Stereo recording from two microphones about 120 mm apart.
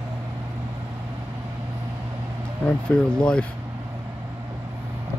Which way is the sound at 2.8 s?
10° left (ahead or behind).